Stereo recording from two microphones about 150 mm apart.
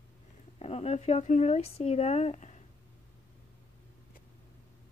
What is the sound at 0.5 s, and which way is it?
Speech, 45° left (ahead or behind).